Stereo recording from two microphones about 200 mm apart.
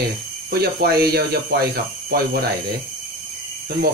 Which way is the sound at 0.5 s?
50° right (ahead or behind).